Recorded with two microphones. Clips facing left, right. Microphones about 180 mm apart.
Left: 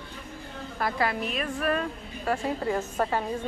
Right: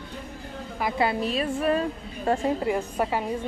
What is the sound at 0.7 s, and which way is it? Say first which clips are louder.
Speech: right 2 dB; 15° right (ahead or behind).